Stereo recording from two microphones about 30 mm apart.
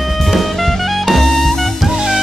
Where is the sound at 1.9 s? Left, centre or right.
Centre.